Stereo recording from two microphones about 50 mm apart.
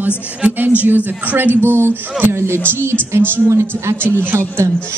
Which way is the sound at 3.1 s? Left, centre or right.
Right.